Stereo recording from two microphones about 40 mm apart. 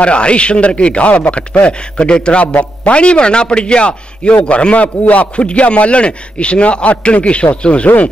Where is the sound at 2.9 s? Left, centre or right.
Left.